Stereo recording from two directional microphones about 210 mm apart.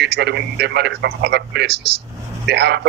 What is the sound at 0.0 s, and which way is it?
Speech, 55° right (ahead or behind).